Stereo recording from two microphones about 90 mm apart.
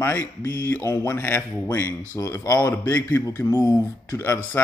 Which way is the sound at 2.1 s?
40° left (ahead or behind).